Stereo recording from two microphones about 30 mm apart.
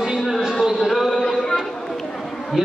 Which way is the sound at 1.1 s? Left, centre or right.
Centre.